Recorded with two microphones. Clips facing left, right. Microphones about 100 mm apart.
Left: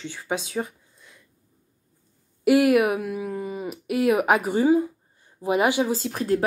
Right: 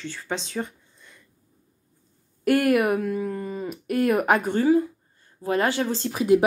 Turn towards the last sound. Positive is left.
turn(degrees=-10)  # may be behind; listen again after turning